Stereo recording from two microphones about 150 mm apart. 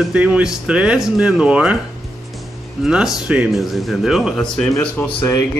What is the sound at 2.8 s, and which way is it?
Speech, 5° right (ahead or behind).